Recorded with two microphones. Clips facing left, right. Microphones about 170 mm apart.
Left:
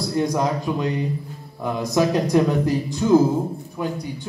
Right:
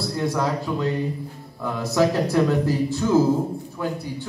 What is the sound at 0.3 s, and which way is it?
A man's voice, 20° left (ahead or behind).